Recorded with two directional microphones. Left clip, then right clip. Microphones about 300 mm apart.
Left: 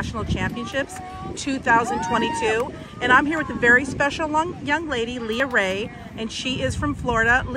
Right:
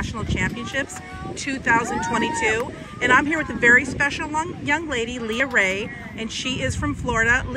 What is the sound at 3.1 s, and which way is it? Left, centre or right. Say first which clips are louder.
Speech: left 2 dB; centre.